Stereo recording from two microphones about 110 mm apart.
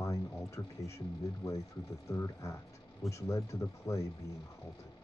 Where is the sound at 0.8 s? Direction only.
30° left (ahead or behind).